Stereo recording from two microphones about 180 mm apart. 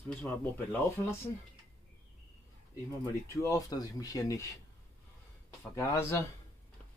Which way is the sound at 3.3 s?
15° left (ahead or behind).